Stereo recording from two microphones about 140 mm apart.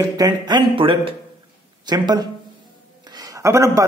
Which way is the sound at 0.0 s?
30° right (ahead or behind).